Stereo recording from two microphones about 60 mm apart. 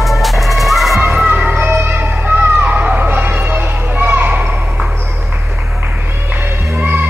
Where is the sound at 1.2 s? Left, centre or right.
Centre.